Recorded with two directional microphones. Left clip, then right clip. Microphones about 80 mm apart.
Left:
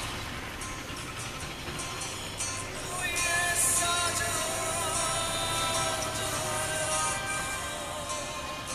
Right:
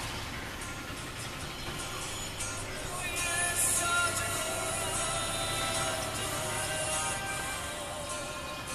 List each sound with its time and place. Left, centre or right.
3.2 s music: left